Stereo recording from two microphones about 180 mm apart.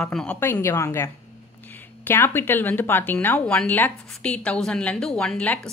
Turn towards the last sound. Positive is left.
turn(degrees=5)  # may be behind; listen again after turning